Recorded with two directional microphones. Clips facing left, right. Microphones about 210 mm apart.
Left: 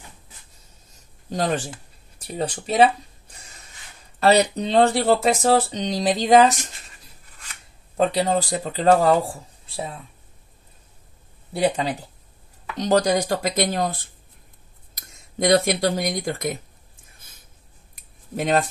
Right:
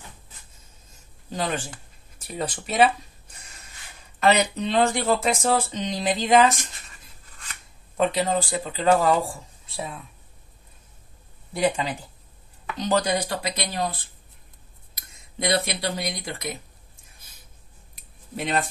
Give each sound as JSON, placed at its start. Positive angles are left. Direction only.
{"t": 0.9, "sound": "a sound", "side_deg": 40}
{"t": 2.2, "sound": "speech", "side_deg": 30}
{"t": 4.2, "sound": "speech", "side_deg": 35}
{"t": 8.0, "sound": "speech", "side_deg": 35}
{"t": 11.5, "sound": "speech", "side_deg": 35}
{"t": 17.9, "sound": "a sound", "side_deg": 45}